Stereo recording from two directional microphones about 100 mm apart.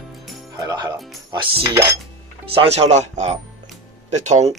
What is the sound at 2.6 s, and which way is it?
Speech, 90° right.